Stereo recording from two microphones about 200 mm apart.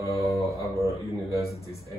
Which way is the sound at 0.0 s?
15° right (ahead or behind).